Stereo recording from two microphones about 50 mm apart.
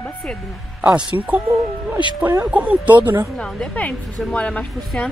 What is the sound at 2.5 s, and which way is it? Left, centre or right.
Speech, right.